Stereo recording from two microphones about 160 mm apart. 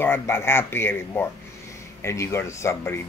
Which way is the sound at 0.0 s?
15° left (ahead or behind).